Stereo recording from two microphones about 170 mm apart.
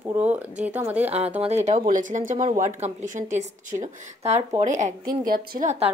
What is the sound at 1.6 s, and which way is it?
A woman's voice, 45° right (ahead or behind).